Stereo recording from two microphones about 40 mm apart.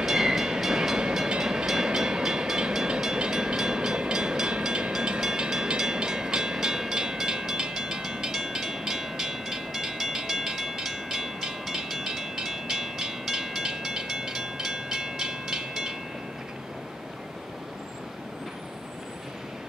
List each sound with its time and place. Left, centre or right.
0.0 s train: centre